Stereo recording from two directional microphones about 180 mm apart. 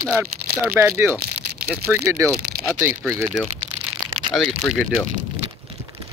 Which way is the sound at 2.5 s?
50° right (ahead or behind).